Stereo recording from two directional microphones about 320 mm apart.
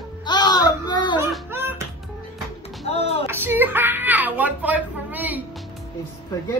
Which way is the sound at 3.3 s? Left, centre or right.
Centre.